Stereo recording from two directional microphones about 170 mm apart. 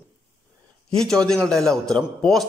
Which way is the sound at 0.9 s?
5° left (ahead or behind).